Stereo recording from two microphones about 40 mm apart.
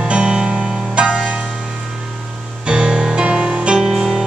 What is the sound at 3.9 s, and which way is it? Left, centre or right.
Music, centre.